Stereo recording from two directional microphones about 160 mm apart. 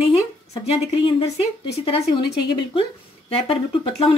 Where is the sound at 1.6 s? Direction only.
40° left (ahead or behind).